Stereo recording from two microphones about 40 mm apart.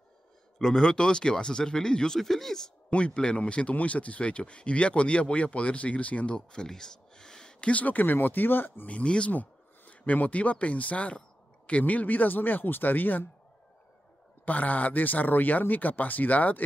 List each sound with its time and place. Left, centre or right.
0.6 s speech: centre
2.1 s speech: centre
2.9 s speech: left
6.3 s speech: centre
7.7 s speech: left
8.8 s speech: left
9.3 s speech: left
11.8 s speech: left
14.4 s speech: left